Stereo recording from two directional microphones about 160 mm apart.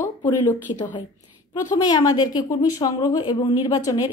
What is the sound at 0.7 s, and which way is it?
A woman's voice, 30° left (ahead or behind).